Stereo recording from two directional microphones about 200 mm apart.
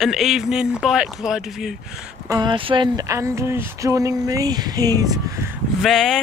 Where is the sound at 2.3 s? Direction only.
20° right (ahead or behind).